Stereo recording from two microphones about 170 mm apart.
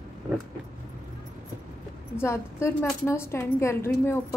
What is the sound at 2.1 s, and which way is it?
A woman's voice, 15° left (ahead or behind).